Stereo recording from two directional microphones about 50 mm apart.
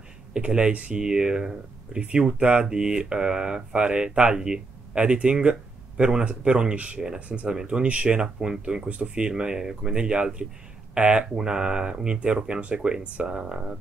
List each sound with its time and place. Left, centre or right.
0.3 s speech: right